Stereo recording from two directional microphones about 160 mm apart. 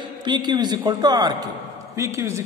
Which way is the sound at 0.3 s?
25° right (ahead or behind).